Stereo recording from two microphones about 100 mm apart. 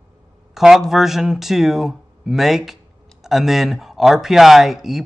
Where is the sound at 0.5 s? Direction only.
5° right (ahead or behind).